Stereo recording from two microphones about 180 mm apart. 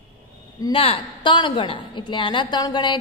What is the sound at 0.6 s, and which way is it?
A woman's voice, 30° left (ahead or behind).